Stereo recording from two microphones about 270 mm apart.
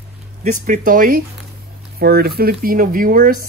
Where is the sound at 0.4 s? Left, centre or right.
Right.